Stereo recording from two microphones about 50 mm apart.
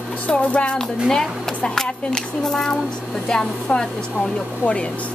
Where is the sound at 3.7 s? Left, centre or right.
Centre.